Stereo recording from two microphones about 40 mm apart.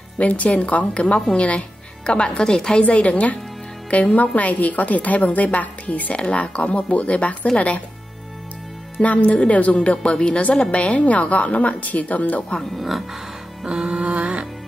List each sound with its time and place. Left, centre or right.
0.2 s a woman's voice: left; by 2.8 s centre
2.8 s a woman's voice: left
9.0 s a woman's voice: left
12.7 s speech: centre
13.7 s music: right